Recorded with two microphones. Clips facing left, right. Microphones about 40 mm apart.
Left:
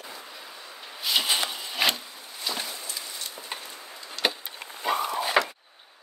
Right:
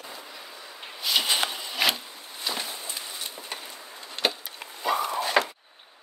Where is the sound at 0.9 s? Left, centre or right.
Centre.